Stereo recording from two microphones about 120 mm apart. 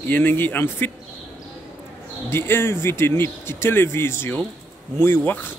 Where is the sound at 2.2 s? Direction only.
20° left (ahead or behind).